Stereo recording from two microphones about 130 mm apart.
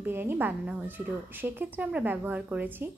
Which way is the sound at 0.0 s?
15° right (ahead or behind).